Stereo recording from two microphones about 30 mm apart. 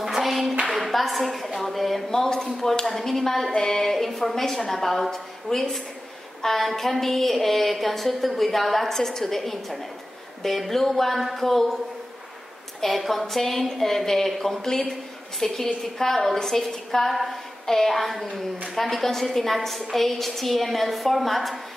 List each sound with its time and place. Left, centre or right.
0.2 s clapping: centre
0.7 s speech: centre
2.0 s speech: centre
2.9 s a woman's voice: centre
3.9 s a woman's voice: centre
12.8 s a woman's voice: centre
17.9 s a woman's voice: centre